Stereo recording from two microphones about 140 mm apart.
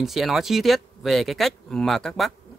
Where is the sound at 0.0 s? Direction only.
Centre (ahead or behind).